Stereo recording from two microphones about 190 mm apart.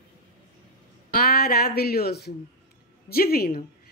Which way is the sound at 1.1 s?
55° left (ahead or behind).